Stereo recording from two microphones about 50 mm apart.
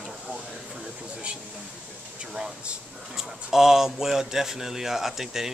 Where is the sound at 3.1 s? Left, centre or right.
Centre.